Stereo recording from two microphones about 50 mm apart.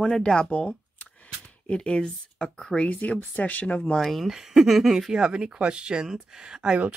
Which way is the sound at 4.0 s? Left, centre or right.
Centre.